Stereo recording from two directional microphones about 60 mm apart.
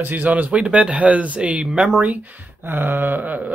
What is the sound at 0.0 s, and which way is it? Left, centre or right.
Speech, right.